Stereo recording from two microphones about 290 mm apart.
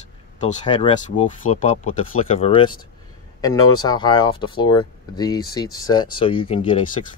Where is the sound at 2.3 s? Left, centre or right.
Centre.